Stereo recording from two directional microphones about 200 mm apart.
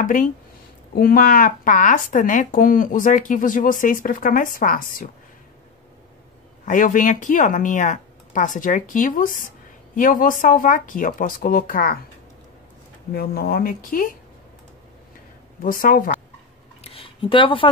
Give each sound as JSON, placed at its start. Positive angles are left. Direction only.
{"t": 0.0, "sound": "speech", "side_deg": 40}
{"t": 6.6, "sound": "speech", "side_deg": 40}
{"t": 13.1, "sound": "speech", "side_deg": 50}
{"t": 15.6, "sound": "speech", "side_deg": 45}
{"t": 16.8, "sound": "a sound", "side_deg": 25}